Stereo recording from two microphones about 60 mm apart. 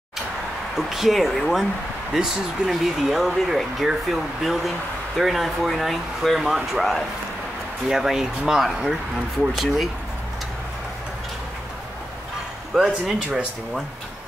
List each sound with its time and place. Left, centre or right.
0.7 s speech: centre
12.7 s speech: centre